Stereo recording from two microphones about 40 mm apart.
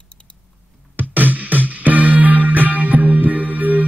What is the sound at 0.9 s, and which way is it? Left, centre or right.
Music, right.